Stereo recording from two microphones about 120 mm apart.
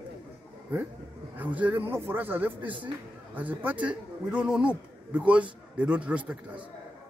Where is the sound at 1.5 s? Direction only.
15° right (ahead or behind).